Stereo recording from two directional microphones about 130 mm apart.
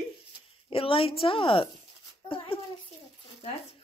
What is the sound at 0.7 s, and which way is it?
A woman's voice, 45° left (ahead or behind).